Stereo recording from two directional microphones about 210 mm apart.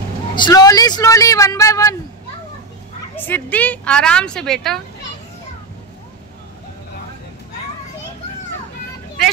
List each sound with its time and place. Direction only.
0.4 s speech: 20° left (ahead or behind)
3.2 s speech: 10° left (ahead or behind)